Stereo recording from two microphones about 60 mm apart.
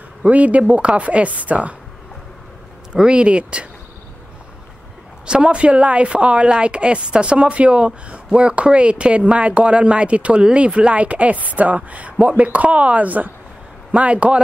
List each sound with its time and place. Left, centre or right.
0.2 s a woman's voice: right
2.9 s speech: centre
5.2 s a woman's voice: centre